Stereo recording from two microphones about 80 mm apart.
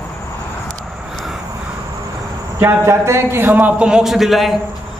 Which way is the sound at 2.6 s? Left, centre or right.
Right.